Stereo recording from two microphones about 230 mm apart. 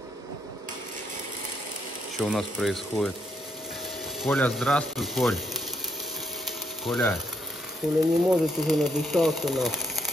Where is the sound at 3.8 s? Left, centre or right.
Centre.